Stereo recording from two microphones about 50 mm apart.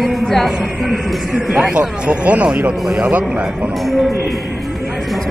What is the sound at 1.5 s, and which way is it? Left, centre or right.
Speech, centre.